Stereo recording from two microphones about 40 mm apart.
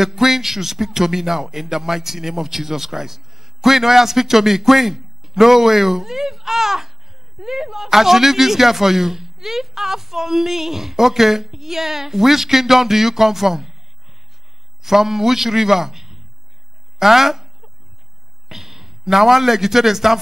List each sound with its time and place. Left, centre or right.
0.0 s a man's voice: centre
14.8 s a man's voice: centre
18.5 s a man's voice: centre